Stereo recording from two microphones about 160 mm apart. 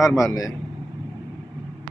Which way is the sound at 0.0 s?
20° left (ahead or behind).